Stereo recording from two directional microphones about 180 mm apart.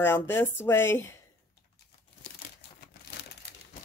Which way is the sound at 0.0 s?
10° left (ahead or behind).